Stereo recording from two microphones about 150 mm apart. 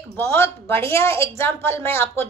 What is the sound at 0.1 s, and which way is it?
A woman's voice, 15° left (ahead or behind).